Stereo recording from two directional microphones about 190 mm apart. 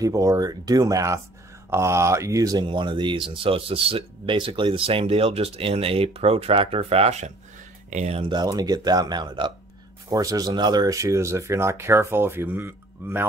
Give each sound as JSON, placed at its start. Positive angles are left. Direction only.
{"t": 0.0, "sound": "speech", "side_deg": -15}